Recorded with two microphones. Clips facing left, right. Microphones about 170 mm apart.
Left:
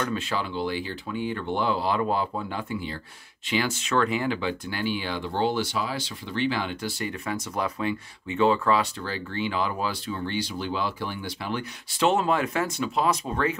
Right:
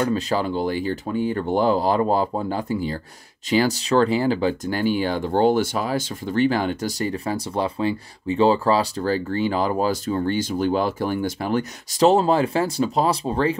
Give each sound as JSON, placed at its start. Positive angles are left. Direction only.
{"t": 0.0, "sound": "speech", "side_deg": -35}